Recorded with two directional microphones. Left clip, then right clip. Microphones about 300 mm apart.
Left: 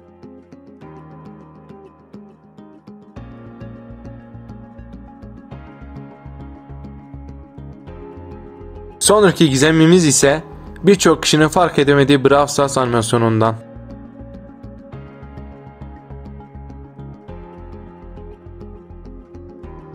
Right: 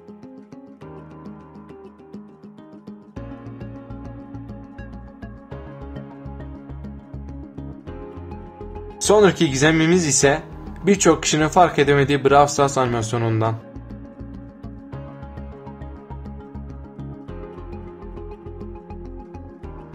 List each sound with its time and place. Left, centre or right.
8.1 s music: centre
9.0 s speech: centre